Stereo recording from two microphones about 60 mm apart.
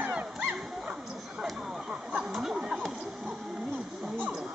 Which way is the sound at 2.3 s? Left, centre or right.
Centre.